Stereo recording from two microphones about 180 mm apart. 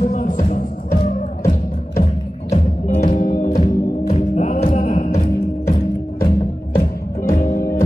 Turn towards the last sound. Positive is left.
turn(degrees=50)  # may be behind; listen again after turning